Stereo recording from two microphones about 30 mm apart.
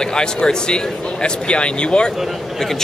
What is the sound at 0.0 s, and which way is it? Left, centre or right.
A man's voice, left.